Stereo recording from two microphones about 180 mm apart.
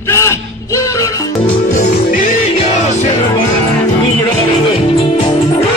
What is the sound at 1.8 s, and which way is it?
Music, 50° left (ahead or behind).